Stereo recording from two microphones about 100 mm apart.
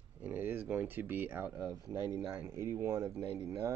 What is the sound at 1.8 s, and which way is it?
Speech, 40° left (ahead or behind).